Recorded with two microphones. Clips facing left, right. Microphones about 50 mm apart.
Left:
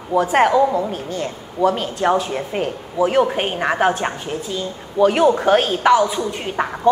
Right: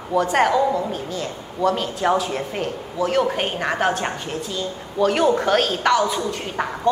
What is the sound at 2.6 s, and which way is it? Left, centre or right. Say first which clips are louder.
A woman's voice: left 6 dB; centre.